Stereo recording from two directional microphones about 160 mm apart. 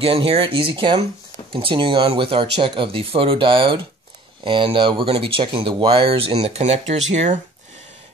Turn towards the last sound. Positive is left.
turn(degrees=-45)  # may be behind; listen again after turning